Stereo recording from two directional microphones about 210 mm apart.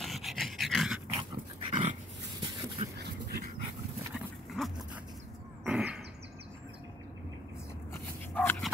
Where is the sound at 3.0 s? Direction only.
50° right (ahead or behind).